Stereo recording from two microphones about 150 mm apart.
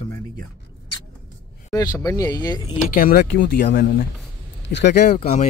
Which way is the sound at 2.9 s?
85° left.